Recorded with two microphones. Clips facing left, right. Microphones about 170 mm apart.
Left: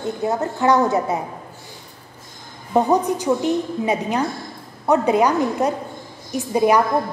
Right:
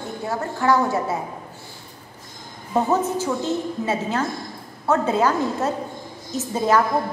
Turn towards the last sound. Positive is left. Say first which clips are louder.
# left 3 dB
turn(degrees=15)  # may be behind; listen again after turning